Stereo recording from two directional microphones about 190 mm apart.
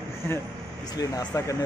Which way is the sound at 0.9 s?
15° left (ahead or behind).